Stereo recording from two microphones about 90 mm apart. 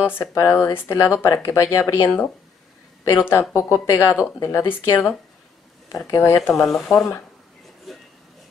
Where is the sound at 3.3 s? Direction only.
30° left (ahead or behind).